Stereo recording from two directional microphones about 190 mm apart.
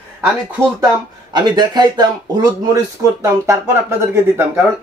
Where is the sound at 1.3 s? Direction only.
20° right (ahead or behind).